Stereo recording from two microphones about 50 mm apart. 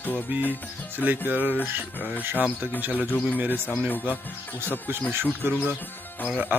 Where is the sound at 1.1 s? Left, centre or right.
Right.